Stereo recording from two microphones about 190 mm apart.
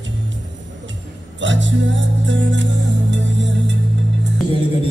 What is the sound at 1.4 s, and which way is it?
Music, 75° right (ahead or behind).